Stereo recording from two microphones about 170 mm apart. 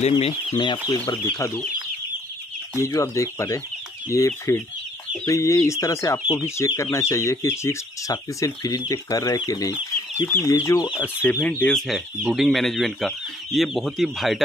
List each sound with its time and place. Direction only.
0.1 s speech: 30° left (ahead or behind)
1.0 s speech: 20° left (ahead or behind)
2.8 s speech: 20° left (ahead or behind); by 14.4 s centre (ahead or behind)